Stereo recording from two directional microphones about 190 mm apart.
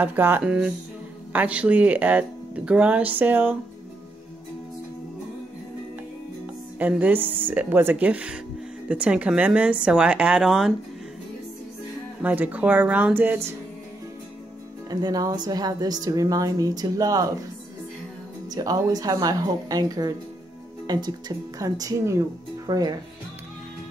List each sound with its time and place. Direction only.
0.0 s speech: 10° right (ahead or behind)
6.8 s a woman's voice: 10° right (ahead or behind)
12.2 s speech: 10° right (ahead or behind)
14.9 s a woman's voice: 20° right (ahead or behind)
18.5 s a woman's voice: 20° right (ahead or behind)